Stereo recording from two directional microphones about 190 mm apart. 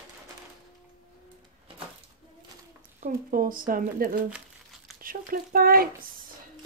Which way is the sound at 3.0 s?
45° right (ahead or behind).